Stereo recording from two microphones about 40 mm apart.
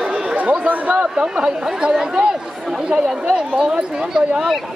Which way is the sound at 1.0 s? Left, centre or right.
Right.